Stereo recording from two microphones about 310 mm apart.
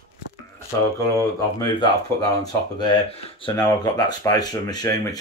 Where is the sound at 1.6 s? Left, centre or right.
Centre.